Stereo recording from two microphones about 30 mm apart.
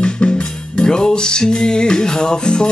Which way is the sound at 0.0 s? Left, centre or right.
Left.